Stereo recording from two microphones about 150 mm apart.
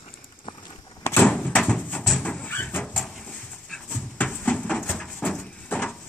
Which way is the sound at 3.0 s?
Centre (ahead or behind).